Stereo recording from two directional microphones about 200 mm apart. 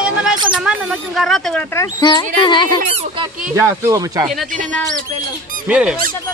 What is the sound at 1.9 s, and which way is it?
Speech, 20° left (ahead or behind).